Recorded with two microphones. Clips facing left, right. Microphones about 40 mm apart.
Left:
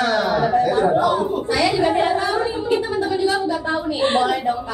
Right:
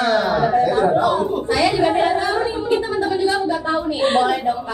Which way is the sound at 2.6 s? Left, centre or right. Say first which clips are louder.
Right 1 dB; centre.